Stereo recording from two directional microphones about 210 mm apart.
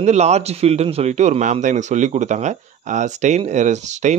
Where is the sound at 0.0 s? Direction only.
30° right (ahead or behind).